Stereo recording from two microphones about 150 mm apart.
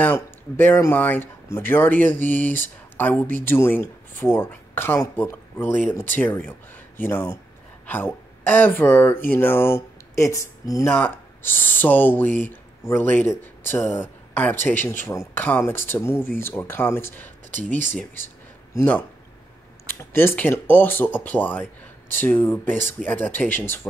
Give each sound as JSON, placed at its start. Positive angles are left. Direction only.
{"t": 0.0, "sound": "speech", "side_deg": 10}
{"t": 17.5, "sound": "speech", "side_deg": -60}
{"t": 17.9, "sound": "speech", "side_deg": 15}